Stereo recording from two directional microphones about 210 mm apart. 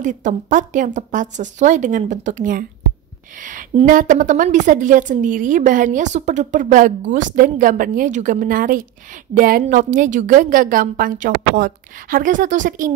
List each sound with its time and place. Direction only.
0.0 s a woman's voice: 35° right (ahead or behind)